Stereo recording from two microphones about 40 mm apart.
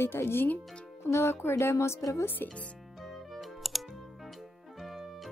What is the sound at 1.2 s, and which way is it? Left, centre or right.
Speech, left.